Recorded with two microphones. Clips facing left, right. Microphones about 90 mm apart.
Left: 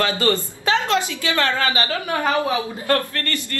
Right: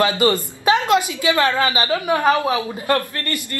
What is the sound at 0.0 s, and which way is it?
A man's voice, 20° right (ahead or behind).